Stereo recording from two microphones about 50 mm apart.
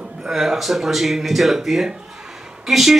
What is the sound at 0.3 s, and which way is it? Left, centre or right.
Speech, centre.